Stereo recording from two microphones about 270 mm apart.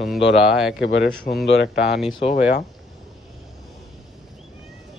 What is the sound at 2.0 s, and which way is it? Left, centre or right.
Speech, left.